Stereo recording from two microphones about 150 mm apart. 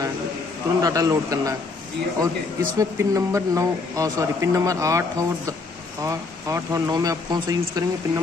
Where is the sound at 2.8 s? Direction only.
20° right (ahead or behind).